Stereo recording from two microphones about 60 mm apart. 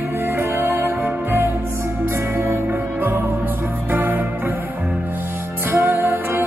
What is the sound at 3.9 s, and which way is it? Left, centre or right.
Music, right.